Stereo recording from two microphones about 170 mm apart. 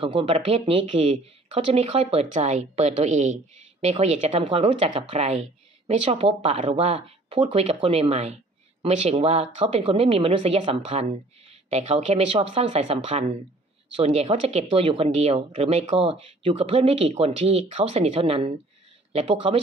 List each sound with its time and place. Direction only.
0.0 s speech: 30° right (ahead or behind)